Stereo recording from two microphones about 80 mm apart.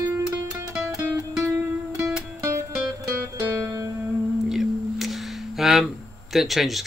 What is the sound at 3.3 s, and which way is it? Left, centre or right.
Music, right.